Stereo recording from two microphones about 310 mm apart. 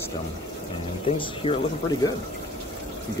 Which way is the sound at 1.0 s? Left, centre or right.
Centre.